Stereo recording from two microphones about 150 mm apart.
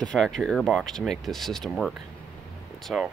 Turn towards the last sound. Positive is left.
turn(degrees=0)  # may be behind; listen again after turning